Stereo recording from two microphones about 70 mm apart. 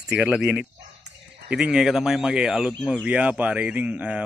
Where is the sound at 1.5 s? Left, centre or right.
Centre.